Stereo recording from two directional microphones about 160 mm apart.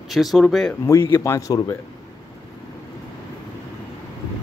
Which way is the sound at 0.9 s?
15° left (ahead or behind).